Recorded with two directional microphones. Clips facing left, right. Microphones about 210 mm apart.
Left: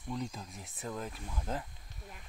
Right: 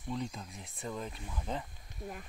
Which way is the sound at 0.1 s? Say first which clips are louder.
Right 1 dB; centre (ahead or behind).